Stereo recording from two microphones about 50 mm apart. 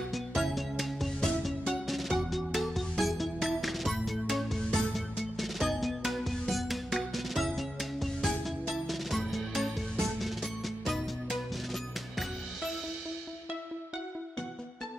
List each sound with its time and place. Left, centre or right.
0.1 s music: centre